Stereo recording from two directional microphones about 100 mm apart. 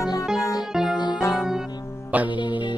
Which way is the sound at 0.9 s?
45° left (ahead or behind).